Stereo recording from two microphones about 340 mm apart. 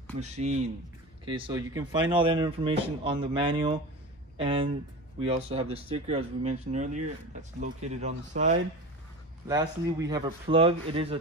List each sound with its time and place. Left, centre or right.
0.2 s speech: centre